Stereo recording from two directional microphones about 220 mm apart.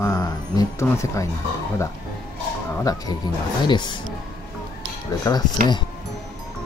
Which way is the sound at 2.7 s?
15° left (ahead or behind).